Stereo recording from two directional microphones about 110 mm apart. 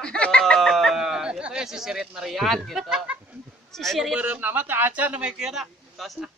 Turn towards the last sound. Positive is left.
turn(degrees=-5)  # may be behind; listen again after turning